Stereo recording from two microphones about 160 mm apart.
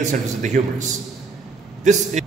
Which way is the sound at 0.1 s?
50° right (ahead or behind).